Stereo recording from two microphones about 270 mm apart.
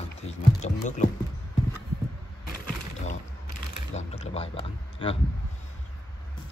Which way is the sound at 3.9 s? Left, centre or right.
Left.